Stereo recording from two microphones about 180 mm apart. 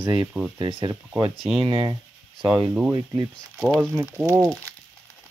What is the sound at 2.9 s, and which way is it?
Speech, 20° right (ahead or behind).